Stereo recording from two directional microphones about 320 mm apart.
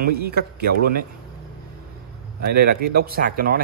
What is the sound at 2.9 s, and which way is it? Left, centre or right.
Speech, right.